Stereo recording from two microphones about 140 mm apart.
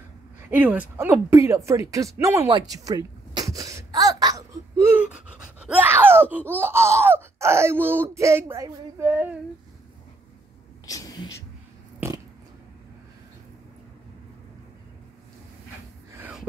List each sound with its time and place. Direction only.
0.5 s speech: 10° right (ahead or behind)
10.9 s whispering: 25° left (ahead or behind)
16.2 s wheeze: 5° right (ahead or behind)